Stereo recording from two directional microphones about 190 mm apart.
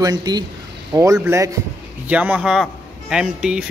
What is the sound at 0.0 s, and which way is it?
A man's voice, 20° right (ahead or behind).